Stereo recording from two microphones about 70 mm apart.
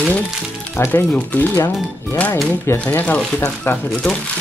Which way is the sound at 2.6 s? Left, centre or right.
Left.